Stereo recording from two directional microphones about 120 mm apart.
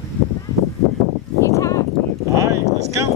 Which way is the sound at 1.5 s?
25° left (ahead or behind).